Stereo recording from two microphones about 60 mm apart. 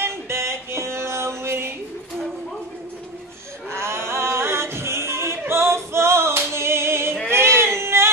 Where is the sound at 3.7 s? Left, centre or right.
Right.